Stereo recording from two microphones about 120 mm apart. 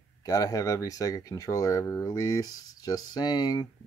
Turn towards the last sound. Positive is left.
turn(degrees=35)  # may be behind; listen again after turning